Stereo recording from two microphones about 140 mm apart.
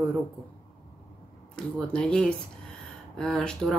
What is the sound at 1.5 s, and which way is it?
A woman's voice, 5° left (ahead or behind).